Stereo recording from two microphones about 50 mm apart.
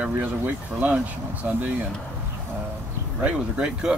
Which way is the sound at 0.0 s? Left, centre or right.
Right.